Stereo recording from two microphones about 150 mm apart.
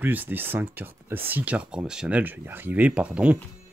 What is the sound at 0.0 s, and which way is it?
Speech, 10° right (ahead or behind).